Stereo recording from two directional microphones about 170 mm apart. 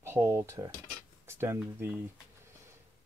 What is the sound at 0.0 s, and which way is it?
Speech, 15° right (ahead or behind).